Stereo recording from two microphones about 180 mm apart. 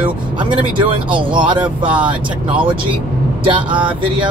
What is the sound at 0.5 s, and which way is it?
Speech, 25° right (ahead or behind).